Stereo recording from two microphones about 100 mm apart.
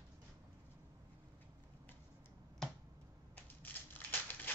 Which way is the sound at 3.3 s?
20° left (ahead or behind).